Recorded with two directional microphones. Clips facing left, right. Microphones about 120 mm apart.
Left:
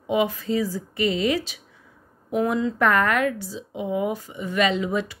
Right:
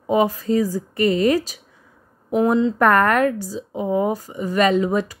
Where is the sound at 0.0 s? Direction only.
40° right (ahead or behind).